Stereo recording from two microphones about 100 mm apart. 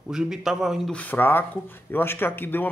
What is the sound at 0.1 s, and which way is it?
Speech, 5° right (ahead or behind).